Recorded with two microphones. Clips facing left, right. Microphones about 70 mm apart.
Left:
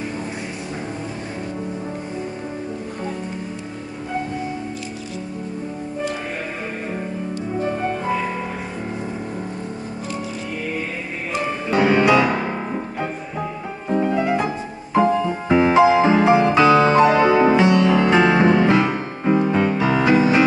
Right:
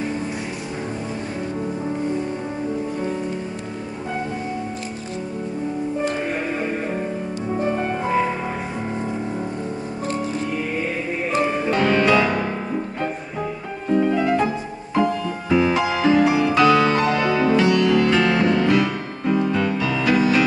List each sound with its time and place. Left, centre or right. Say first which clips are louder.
11.7 s music: left 3 dB; centre
15.4 s music: left 5 dB; left